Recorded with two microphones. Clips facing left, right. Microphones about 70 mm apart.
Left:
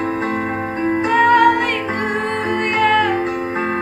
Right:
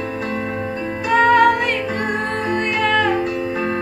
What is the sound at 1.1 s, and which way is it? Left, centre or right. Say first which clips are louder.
Music: even; centre.